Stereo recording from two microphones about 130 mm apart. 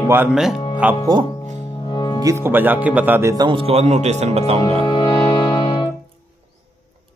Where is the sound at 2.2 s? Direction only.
20° right (ahead or behind).